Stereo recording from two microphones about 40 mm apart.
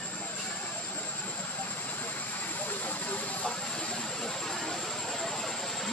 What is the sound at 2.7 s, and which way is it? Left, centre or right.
Vehicle, left.